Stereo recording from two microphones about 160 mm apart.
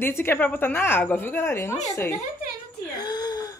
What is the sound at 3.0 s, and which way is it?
Gasp, 25° left (ahead or behind).